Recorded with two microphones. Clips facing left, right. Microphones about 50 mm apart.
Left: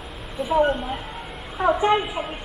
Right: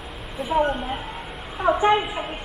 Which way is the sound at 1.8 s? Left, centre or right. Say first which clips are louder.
Right 1 dB; centre.